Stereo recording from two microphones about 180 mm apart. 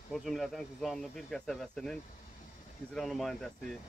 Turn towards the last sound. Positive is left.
turn(degrees=0)  # may be behind; listen again after turning